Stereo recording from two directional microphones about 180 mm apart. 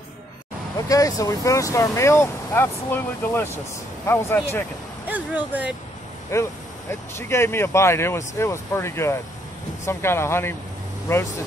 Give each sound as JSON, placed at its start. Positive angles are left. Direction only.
{"t": 0.8, "sound": "speech", "side_deg": 20}
{"t": 5.1, "sound": "speech", "side_deg": -10}
{"t": 6.3, "sound": "speech", "side_deg": 15}